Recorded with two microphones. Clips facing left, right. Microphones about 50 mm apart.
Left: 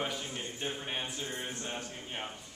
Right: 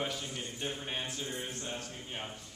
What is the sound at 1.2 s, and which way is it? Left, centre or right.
Speech, left.